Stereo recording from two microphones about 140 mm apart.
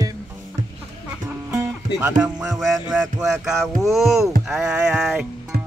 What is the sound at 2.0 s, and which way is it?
Music, 5° right (ahead or behind).